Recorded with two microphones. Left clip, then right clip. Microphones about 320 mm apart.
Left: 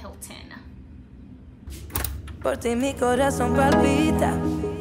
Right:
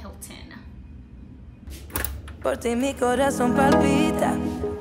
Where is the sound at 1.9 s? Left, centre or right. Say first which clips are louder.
Right 1 dB; centre.